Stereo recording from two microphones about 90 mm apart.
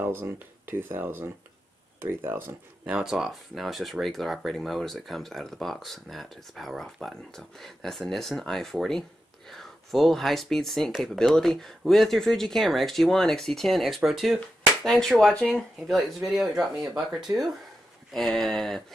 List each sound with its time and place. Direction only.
0.0 s speech: 25° right (ahead or behind)
2.8 s speech: 10° right (ahead or behind)